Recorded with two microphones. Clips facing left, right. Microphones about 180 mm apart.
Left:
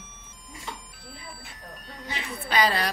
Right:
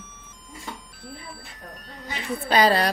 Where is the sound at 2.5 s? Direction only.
35° right (ahead or behind).